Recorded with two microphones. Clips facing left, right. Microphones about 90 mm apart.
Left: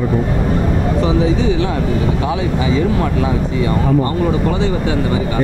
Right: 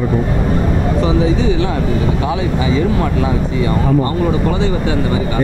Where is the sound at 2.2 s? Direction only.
30° right (ahead or behind).